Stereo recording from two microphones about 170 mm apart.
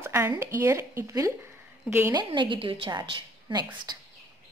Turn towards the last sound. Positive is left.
turn(degrees=-25)  # may be behind; listen again after turning